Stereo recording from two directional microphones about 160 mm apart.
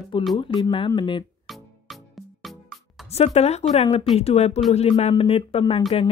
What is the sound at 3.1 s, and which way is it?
Speech, 40° left (ahead or behind).